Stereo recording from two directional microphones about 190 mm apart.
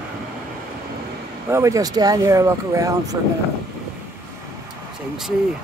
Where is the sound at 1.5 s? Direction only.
15° right (ahead or behind).